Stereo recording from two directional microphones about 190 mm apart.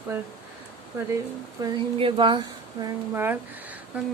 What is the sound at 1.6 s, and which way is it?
A woman's voice, 25° right (ahead or behind).